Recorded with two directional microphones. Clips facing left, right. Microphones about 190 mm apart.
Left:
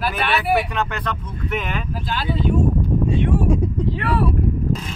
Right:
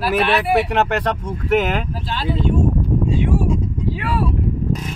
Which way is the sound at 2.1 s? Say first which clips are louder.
Even; centre (ahead or behind).